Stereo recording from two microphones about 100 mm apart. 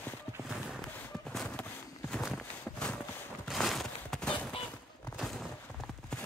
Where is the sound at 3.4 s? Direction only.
Centre (ahead or behind).